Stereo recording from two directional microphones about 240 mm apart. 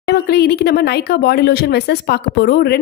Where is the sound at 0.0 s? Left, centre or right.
Left.